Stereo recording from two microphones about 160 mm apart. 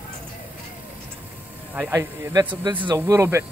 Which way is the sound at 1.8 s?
15° right (ahead or behind).